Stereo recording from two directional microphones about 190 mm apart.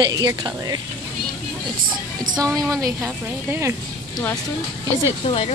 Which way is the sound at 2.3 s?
15° right (ahead or behind).